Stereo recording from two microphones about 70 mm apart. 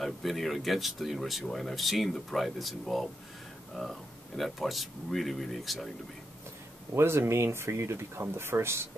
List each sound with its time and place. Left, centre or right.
0.0 s speech: centre
6.9 s speech: right